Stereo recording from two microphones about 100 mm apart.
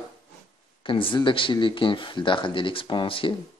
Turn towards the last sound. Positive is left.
turn(degrees=60)  # may be behind; listen again after turning